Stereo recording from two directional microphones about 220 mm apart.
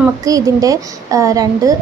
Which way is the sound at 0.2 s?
15° right (ahead or behind).